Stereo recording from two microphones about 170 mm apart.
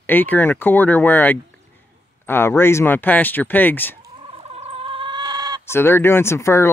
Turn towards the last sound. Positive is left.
turn(degrees=15)  # may be behind; listen again after turning